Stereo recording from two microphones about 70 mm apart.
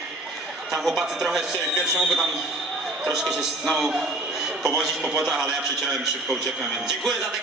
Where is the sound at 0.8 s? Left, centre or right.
Centre.